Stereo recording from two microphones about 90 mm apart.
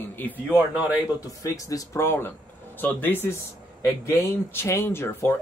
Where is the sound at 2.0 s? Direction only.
25° left (ahead or behind).